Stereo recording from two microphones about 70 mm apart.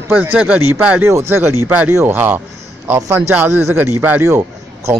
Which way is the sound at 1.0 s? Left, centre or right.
Right.